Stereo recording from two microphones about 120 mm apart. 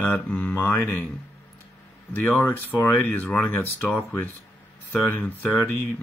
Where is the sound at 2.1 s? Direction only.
20° left (ahead or behind).